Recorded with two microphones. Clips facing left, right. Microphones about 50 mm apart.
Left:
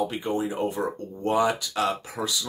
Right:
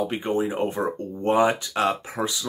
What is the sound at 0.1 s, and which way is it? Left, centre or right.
Speech, right.